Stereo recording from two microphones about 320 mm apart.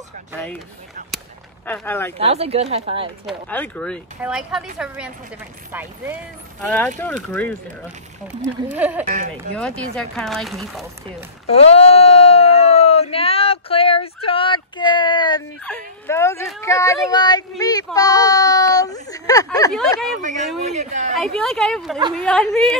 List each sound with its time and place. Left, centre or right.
1.7 s speech: centre
2.1 s speech: centre
3.3 s speech: centre
7.2 s speech: centre
8.7 s speech: centre
9.0 s speech: right
9.3 s speech: centre
11.4 s speech: centre
20.2 s speech: right
21.2 s speech: centre